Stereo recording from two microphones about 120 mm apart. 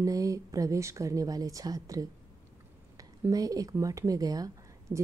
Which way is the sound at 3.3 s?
30° right (ahead or behind).